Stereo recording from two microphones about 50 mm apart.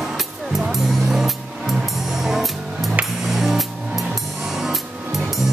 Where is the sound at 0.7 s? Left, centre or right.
Centre.